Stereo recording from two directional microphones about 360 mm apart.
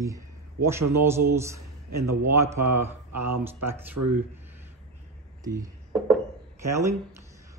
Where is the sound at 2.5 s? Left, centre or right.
Right.